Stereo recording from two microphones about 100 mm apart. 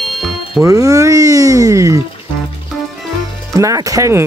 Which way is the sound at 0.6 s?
35° right (ahead or behind).